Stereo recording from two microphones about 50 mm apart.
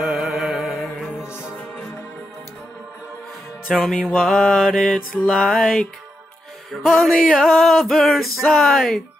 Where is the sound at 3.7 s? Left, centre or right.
Centre.